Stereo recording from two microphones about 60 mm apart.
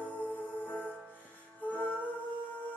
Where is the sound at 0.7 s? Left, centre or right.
Left.